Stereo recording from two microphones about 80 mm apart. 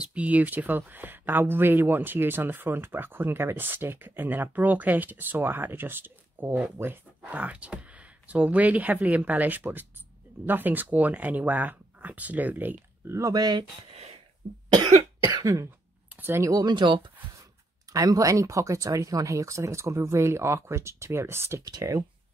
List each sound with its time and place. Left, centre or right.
0.0 s speech: centre
13.2 s speech: right
15.3 s cough: right
16.2 s speech: right
16.6 s speech: right
17.9 s speech: right
21.6 s cough: right